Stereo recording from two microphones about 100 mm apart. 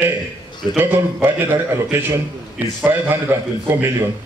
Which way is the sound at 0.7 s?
15° right (ahead or behind).